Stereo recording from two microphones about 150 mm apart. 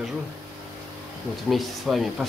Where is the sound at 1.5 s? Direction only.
Centre (ahead or behind).